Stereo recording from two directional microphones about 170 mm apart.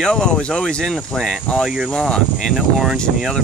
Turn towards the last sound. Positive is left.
turn(degrees=0)  # may be behind; listen again after turning